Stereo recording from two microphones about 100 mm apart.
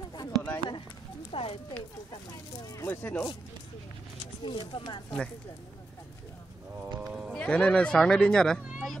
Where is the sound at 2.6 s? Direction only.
35° left (ahead or behind).